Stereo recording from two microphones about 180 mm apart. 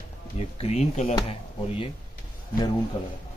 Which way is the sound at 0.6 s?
35° left (ahead or behind).